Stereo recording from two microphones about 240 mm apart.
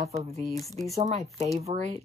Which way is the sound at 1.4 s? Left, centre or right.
Right.